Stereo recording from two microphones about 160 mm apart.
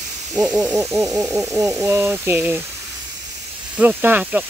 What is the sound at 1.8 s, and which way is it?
Speech, 15° right (ahead or behind).